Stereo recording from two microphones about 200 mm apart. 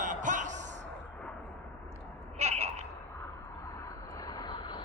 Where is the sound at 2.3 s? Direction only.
30° right (ahead or behind).